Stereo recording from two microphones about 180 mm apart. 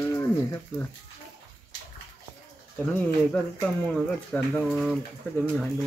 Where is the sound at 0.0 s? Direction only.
15° left (ahead or behind).